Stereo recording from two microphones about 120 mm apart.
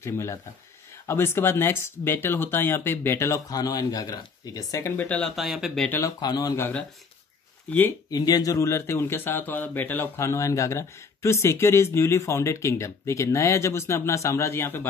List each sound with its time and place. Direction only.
0.0 s speech: 25° left (ahead or behind)
4.9 s speech: 10° left (ahead or behind)
5.3 s speech: centre (ahead or behind)
5.9 s speech: 25° left (ahead or behind)
6.2 s speech: 35° left (ahead or behind)
6.5 s speech: 20° left (ahead or behind)
8.1 s speech: 30° left (ahead or behind)